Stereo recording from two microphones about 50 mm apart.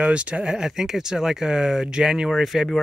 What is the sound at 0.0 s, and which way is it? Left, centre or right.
Speech, right.